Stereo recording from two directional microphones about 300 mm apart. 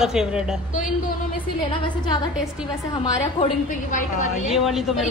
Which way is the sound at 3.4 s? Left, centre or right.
Left.